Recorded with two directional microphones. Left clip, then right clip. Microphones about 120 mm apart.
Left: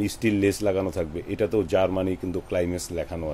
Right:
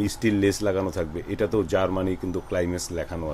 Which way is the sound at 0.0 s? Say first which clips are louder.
Even; 15° left (ahead or behind).